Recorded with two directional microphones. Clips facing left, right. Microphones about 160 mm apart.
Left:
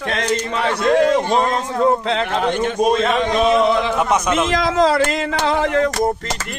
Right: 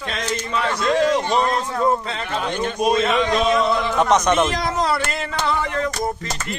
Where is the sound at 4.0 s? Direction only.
5° left (ahead or behind).